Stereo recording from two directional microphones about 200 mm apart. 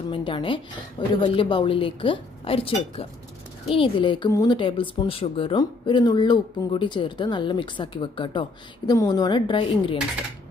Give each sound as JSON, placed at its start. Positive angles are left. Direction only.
{"t": 0.1, "sound": "speech", "side_deg": 25}